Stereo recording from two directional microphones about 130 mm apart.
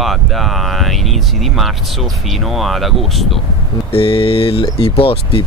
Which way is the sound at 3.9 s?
45° left (ahead or behind).